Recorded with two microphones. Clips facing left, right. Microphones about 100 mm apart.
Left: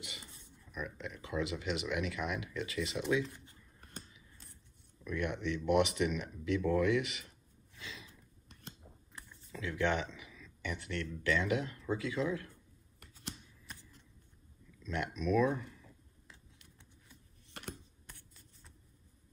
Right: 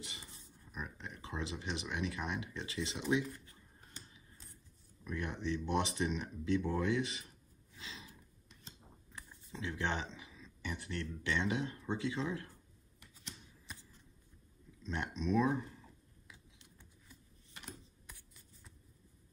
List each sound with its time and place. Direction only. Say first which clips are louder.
0.7 s speech: left 4 dB; 35° right (ahead or behind)
4.1 s scissors: even; 30° right (ahead or behind)
5.0 s speech: left 3 dB; 30° right (ahead or behind)
7.8 s a sound: left 2 dB; 30° right (ahead or behind)
9.5 s speech: left 5 dB; 30° right (ahead or behind)
14.8 s speech: left 2 dB; 30° right (ahead or behind)
17.6 s computer keyboard: left 6 dB; 60° left (ahead or behind)